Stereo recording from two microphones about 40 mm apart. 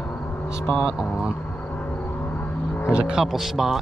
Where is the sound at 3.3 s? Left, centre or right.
Centre.